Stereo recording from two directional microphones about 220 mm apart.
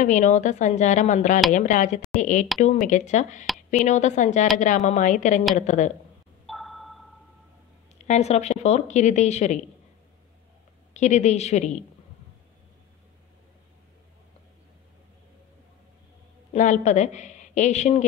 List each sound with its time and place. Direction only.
0.0 s speech: 35° left (ahead or behind)
6.4 s a sound: centre (ahead or behind)
8.0 s speech: 30° left (ahead or behind)
10.9 s speech: 30° left (ahead or behind)
16.5 s speech: 35° left (ahead or behind)